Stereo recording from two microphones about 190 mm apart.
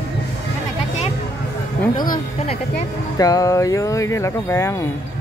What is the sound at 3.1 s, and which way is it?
Speech, 20° left (ahead or behind).